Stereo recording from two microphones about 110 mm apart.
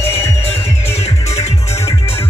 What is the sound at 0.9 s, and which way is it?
Music, 75° left (ahead or behind).